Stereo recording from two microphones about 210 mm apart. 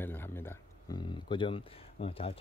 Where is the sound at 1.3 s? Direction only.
25° left (ahead or behind).